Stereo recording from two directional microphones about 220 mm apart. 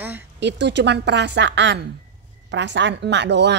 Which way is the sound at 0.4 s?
50° right (ahead or behind).